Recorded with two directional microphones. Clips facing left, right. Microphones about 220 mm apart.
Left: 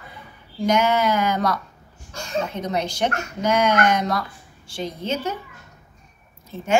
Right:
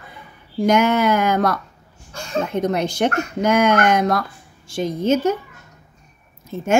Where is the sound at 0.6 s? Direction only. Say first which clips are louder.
Right 4 dB; 55° right (ahead or behind).